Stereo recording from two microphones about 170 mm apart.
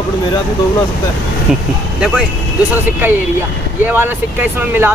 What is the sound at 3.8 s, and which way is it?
Speech, 10° right (ahead or behind).